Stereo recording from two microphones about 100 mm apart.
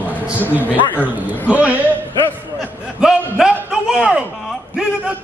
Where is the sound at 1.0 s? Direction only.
15° right (ahead or behind).